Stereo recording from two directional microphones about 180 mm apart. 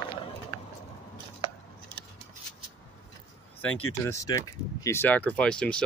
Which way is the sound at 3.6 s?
10° left (ahead or behind).